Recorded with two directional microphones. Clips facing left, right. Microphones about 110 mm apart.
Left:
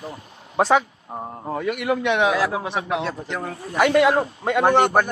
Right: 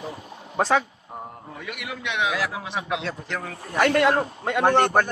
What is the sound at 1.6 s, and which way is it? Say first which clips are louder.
A man's voice: left 11 dB; 45° left (ahead or behind).